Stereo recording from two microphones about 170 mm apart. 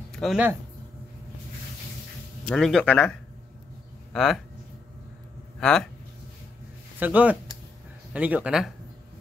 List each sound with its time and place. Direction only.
0.1 s speech: centre (ahead or behind)
2.4 s speech: 5° left (ahead or behind)
5.6 s speech: 5° left (ahead or behind)
7.0 s speech: 10° right (ahead or behind)